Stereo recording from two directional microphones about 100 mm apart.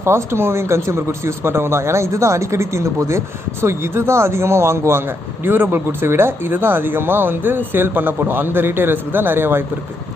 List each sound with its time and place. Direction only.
0.0 s speech: 25° right (ahead or behind)